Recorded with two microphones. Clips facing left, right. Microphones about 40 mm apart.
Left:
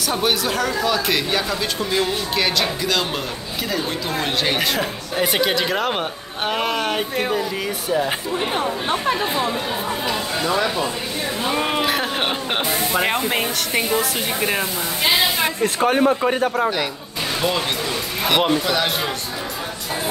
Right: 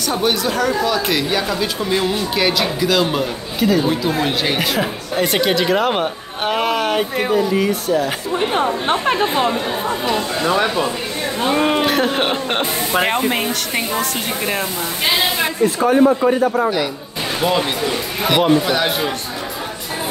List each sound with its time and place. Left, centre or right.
0.1 s speech: centre
10.4 s speech: right
11.4 s speech: centre
15.6 s speech: left
17.4 s speech: centre